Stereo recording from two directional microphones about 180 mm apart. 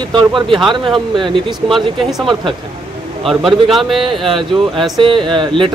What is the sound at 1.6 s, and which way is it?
Speech, centre (ahead or behind).